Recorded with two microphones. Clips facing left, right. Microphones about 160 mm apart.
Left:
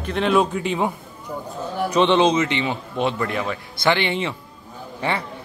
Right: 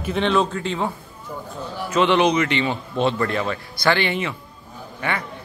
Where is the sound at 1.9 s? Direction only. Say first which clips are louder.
Even; 20° left (ahead or behind).